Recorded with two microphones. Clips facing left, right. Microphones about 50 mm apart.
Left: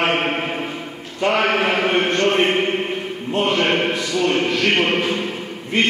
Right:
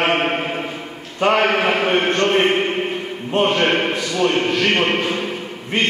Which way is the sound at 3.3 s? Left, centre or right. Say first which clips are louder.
Right 2 dB; right.